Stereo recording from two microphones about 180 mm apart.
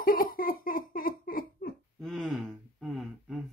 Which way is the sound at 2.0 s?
Centre (ahead or behind).